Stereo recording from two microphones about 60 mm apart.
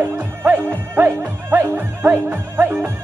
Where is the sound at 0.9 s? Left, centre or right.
Right.